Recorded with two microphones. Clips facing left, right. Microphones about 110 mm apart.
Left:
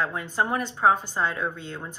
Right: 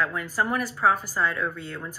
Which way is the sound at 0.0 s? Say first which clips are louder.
Even; 25° left (ahead or behind).